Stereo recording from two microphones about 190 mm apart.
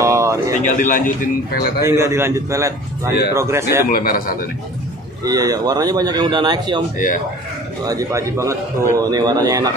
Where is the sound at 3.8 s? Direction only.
50° left (ahead or behind).